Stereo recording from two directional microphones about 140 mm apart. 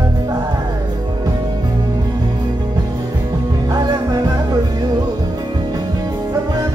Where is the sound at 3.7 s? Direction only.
25° right (ahead or behind).